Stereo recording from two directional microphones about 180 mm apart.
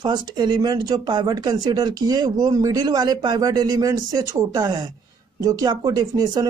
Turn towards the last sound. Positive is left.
turn(degrees=-20)  # may be behind; listen again after turning